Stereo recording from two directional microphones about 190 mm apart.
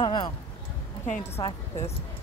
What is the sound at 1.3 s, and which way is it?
Speech, 15° left (ahead or behind).